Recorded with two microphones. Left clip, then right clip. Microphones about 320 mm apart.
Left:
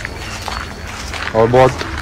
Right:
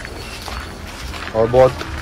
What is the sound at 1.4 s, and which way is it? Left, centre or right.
Speech, left.